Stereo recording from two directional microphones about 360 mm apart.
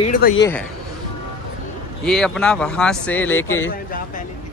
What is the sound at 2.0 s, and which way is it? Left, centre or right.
Speech, centre.